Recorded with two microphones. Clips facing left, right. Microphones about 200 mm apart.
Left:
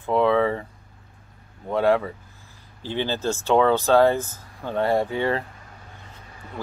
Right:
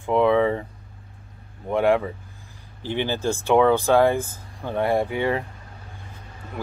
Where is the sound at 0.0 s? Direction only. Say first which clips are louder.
Right 1 dB; 15° right (ahead or behind).